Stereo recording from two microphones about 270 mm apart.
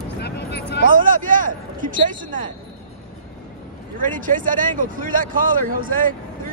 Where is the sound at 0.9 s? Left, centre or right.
Right.